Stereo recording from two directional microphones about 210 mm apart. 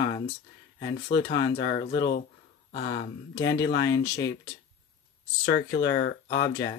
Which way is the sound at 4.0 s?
55° left (ahead or behind).